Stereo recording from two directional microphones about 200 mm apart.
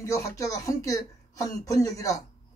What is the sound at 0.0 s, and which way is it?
Speech, 15° left (ahead or behind).